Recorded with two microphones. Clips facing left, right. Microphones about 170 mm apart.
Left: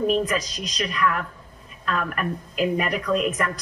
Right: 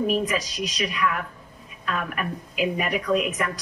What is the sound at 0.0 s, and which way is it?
A woman's voice, 5° right (ahead or behind).